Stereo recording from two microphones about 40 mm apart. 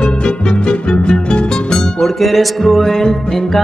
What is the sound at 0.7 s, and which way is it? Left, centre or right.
Music, left.